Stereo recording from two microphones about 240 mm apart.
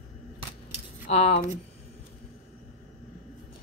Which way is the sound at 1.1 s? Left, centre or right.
Left.